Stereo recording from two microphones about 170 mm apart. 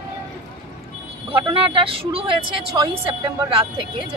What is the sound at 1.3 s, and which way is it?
A woman's voice, 30° right (ahead or behind).